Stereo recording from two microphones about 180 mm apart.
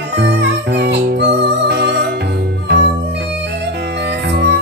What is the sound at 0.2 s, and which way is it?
Music, 70° right (ahead or behind).